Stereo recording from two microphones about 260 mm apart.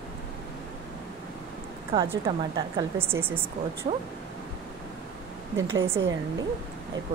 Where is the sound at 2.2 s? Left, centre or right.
Centre.